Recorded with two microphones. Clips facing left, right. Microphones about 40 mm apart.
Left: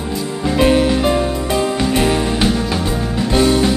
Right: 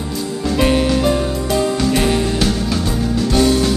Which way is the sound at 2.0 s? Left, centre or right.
Centre.